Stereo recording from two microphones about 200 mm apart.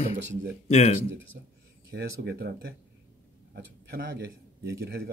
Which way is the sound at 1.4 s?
50° right (ahead or behind).